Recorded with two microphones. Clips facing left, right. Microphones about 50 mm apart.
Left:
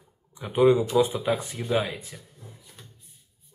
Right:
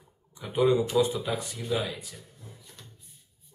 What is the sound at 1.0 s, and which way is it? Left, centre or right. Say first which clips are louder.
Speech: left 3 dB; left.